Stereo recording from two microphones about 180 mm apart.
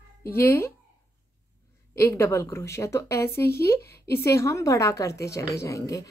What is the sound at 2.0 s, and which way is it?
A woman's voice, 15° left (ahead or behind).